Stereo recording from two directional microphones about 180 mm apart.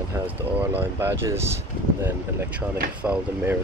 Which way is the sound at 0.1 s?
10° right (ahead or behind).